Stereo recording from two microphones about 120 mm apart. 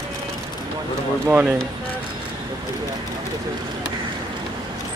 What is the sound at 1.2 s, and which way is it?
Speech, 15° right (ahead or behind).